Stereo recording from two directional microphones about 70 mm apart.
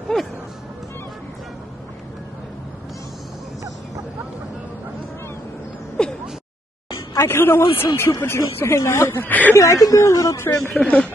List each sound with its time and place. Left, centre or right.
0.1 s music: centre
6.0 s a sound: centre
7.2 s speech: left
9.6 s speech: left
10.5 s speech: centre
10.8 s speech: centre